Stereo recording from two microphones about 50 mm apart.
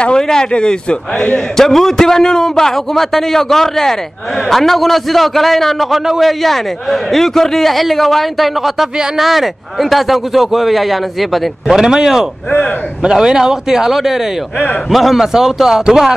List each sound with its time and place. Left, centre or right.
0.0 s a man's voice: centre
1.6 s a man's voice: centre
8.9 s speech: centre
9.2 s a man's voice: centre
11.7 s speech: centre